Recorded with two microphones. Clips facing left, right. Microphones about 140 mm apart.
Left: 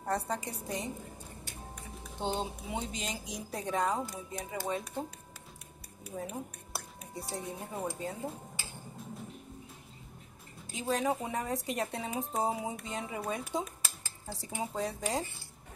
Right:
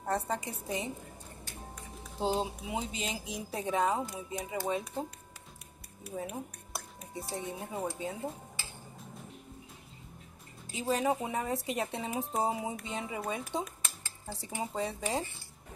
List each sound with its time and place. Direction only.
0.0 s a woman's voice: 5° right (ahead or behind)
2.1 s a woman's voice: 5° right (ahead or behind)
6.0 s speech: 5° right (ahead or behind)
10.7 s a woman's voice: centre (ahead or behind)